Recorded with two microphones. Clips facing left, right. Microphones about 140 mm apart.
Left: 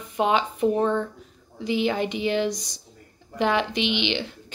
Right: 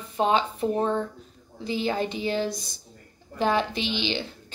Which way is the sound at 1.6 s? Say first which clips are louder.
Left 3 dB; 15° left (ahead or behind).